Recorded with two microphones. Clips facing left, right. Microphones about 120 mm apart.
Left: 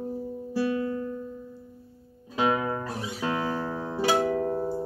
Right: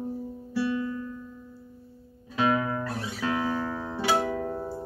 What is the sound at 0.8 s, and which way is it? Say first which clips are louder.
Music: left 3 dB; 45° left (ahead or behind).